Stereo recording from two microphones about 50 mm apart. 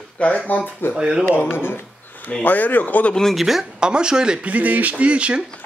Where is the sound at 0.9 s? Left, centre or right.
Centre.